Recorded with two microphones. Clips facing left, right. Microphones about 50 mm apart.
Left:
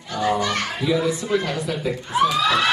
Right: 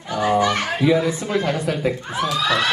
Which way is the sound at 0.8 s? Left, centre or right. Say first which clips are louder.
Right 4 dB; right.